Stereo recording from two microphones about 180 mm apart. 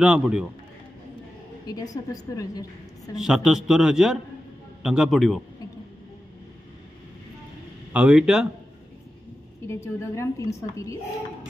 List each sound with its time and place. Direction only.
0.0 s a man's voice: 5° right (ahead or behind)
1.7 s a woman's voice: 20° left (ahead or behind)
3.2 s a man's voice: 5° right (ahead or behind)
7.9 s a man's voice: 5° right (ahead or behind)
9.7 s a woman's voice: 15° left (ahead or behind)